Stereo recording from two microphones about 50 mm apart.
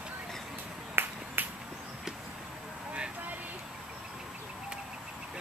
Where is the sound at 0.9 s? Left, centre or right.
Right.